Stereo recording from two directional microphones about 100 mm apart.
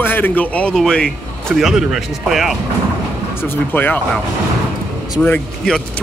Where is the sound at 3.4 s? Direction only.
20° left (ahead or behind).